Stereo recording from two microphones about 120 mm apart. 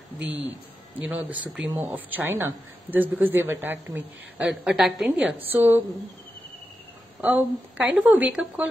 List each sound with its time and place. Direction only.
0.9 s speech: 15° right (ahead or behind)
5.4 s speech: 20° right (ahead or behind)
7.2 s speech: 10° right (ahead or behind)